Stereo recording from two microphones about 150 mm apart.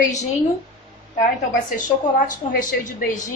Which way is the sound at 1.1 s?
65° left (ahead or behind).